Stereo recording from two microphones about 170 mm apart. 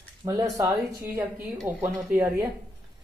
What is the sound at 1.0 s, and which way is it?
Speech, 15° right (ahead or behind).